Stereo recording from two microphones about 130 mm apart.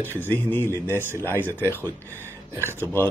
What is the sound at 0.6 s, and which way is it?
Speech, 20° right (ahead or behind).